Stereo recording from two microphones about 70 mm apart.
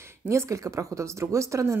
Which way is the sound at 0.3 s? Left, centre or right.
Right.